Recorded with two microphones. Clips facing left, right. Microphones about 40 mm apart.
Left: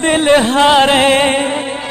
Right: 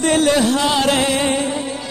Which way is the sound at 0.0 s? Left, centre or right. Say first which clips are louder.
Left 4 dB; left.